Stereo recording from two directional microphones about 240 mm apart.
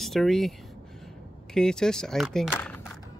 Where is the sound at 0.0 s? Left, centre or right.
Centre.